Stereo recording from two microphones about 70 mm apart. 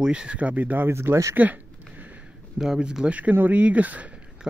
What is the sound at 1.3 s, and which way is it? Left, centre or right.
Speech, right.